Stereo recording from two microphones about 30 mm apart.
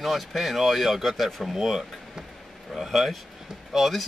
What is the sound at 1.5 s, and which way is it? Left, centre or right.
Speech, centre.